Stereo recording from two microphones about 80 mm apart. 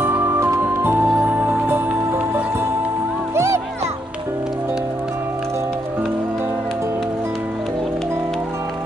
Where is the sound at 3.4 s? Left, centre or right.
Right.